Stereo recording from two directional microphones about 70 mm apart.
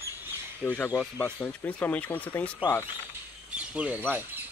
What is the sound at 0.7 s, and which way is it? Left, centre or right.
Speech, left.